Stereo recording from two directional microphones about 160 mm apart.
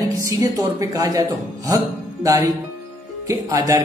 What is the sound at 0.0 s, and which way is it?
Speech, 20° right (ahead or behind).